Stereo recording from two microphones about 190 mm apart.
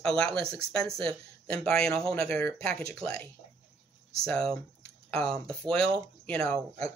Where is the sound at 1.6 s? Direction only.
5° left (ahead or behind).